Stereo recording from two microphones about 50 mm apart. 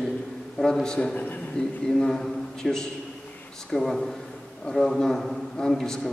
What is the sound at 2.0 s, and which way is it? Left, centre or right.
A man's voice, centre.